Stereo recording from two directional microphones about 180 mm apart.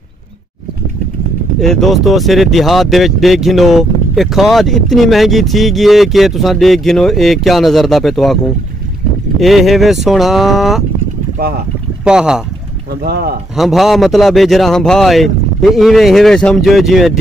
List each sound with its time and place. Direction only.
1.6 s speech: centre (ahead or behind)
9.4 s speech: centre (ahead or behind)
12.0 s speech: 5° right (ahead or behind)
13.0 s speech: 55° right (ahead or behind)
13.6 s speech: centre (ahead or behind)